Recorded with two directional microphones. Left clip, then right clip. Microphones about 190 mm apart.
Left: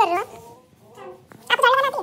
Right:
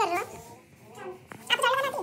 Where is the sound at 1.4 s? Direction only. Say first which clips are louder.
Left 8 dB; centre (ahead or behind).